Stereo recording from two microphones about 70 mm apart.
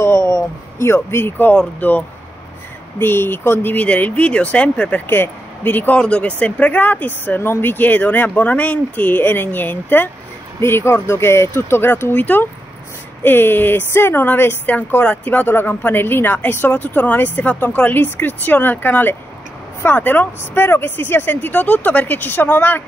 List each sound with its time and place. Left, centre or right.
0.0 s a sound: left
1.5 s speech: centre
5.0 s speech: left
5.9 s speech: centre; by 22.8 s left